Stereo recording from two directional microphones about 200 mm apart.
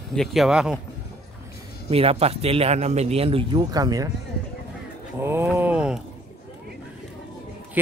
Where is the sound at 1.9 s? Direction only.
30° right (ahead or behind).